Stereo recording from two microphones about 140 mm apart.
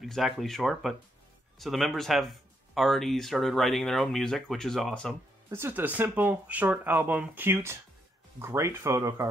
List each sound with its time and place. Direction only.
0.0 s speech: centre (ahead or behind)
5.5 s speech: 15° right (ahead or behind)